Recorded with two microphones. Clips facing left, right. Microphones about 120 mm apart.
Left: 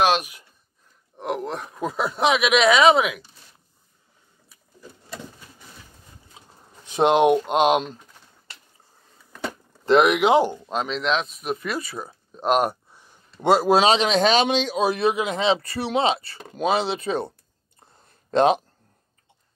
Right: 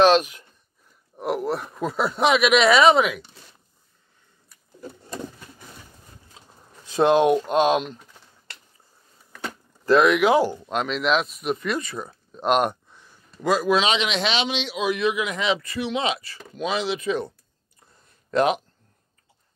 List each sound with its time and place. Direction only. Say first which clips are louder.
0.0 s a sound: right 4 dB; 15° left (ahead or behind)
1.1 s speech: right 3 dB; 5° right (ahead or behind)
6.8 s speech: even; 20° left (ahead or behind)
9.8 s speech: even; 25° left (ahead or behind)
10.7 s speech: right 1 dB; centre (ahead or behind)
13.4 s a man's voice: left 3 dB; 30° left (ahead or behind)
18.3 s speech: left 3 dB; 30° left (ahead or behind)